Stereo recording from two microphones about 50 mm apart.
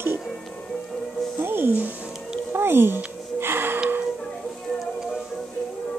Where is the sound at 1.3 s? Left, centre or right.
Right.